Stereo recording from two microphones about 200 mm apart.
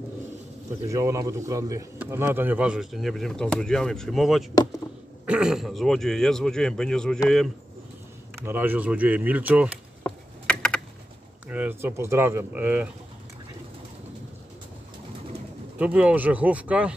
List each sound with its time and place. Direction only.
0.8 s a man's voice: 15° right (ahead or behind); by 7.5 s centre (ahead or behind)
8.4 s speech: 10° right (ahead or behind)
10.4 s typing: 5° left (ahead or behind)
11.4 s speech: 10° right (ahead or behind)
15.8 s speech: 5° right (ahead or behind)